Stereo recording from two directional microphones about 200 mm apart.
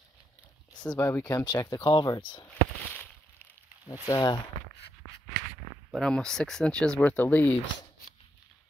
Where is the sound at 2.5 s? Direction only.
5° left (ahead or behind).